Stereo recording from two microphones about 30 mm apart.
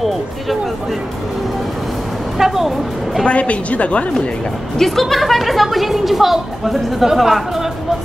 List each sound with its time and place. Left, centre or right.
2.3 s a woman's voice: centre
3.3 s a woman's voice: left
4.7 s a woman's voice: centre